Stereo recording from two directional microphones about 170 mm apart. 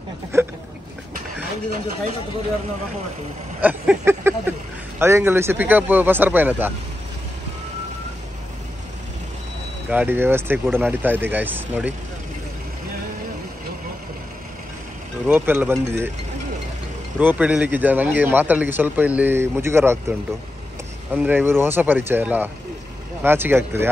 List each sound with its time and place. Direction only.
0.3 s a sound: 15° right (ahead or behind)
3.6 s speech: 10° right (ahead or behind)
9.8 s speech: 10° right (ahead or behind)
15.2 s speech: 10° right (ahead or behind)
17.2 s speech: 10° right (ahead or behind)
21.1 s speech: 10° right (ahead or behind)